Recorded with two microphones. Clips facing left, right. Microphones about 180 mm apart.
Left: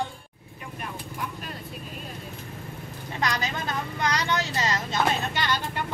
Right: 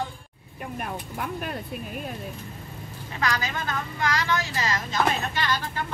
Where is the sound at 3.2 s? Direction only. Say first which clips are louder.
Right 1 dB; 20° left (ahead or behind).